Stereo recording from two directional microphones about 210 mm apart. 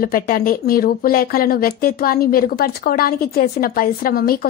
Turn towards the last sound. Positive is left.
turn(degrees=45)  # may be behind; listen again after turning